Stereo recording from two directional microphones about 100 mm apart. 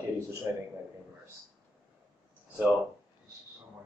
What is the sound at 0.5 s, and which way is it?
Speech, 25° right (ahead or behind).